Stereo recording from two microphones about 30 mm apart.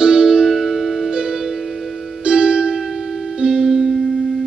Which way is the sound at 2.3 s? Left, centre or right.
Right.